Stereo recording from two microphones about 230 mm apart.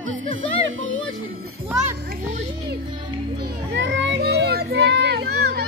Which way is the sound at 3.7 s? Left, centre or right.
Right.